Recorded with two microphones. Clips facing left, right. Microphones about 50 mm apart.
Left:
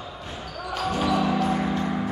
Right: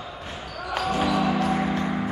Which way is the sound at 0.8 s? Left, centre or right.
Centre.